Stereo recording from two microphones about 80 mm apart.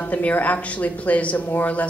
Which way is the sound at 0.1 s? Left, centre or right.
Left.